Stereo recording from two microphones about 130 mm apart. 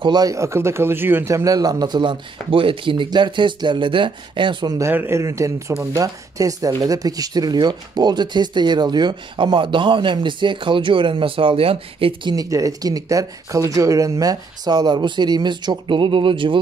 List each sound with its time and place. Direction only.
0.0 s speech: 30° right (ahead or behind)
4.7 s a man's voice: 20° right (ahead or behind); by 16.5 s 40° right (ahead or behind)